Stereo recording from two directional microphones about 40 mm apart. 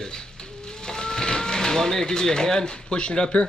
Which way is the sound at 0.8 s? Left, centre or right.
Centre.